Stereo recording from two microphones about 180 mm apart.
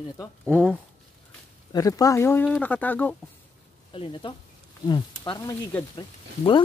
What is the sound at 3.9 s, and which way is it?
Speech, 25° left (ahead or behind).